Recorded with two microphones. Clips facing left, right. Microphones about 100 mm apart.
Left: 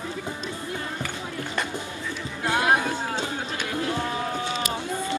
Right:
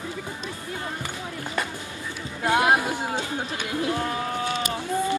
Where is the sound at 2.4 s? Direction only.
15° right (ahead or behind).